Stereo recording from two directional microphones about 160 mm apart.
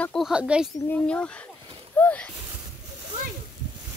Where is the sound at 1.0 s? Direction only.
5° left (ahead or behind).